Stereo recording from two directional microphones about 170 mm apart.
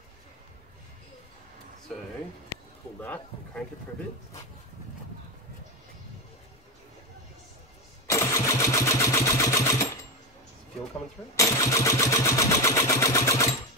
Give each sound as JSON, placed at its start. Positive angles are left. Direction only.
{"t": 3.0, "sound": "speech", "side_deg": 10}
{"t": 8.1, "sound": "engine", "side_deg": 15}
{"t": 11.3, "sound": "a sound", "side_deg": 20}